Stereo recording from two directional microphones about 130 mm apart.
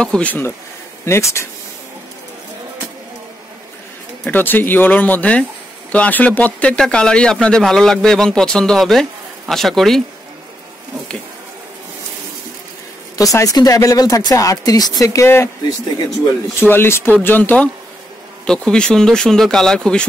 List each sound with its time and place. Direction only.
0.0 s speech: 10° left (ahead or behind)
4.2 s speech: 15° left (ahead or behind)
13.2 s speech: 25° left (ahead or behind)
16.5 s speech: 15° left (ahead or behind)